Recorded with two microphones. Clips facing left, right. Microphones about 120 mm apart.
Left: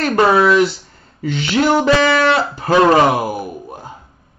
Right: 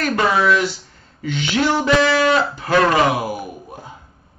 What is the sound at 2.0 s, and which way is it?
Speech, 60° left (ahead or behind).